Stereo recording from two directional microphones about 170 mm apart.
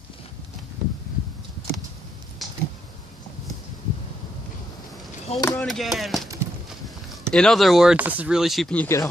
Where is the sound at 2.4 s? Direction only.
Centre (ahead or behind).